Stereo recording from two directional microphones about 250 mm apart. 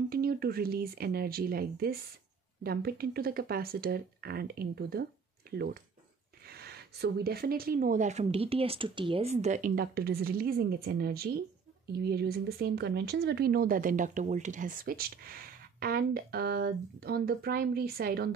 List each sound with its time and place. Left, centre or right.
0.1 s speech: right